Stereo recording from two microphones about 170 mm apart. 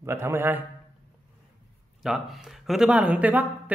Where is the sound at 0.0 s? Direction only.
15° right (ahead or behind).